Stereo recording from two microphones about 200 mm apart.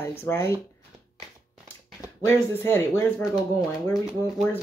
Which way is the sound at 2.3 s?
10° left (ahead or behind).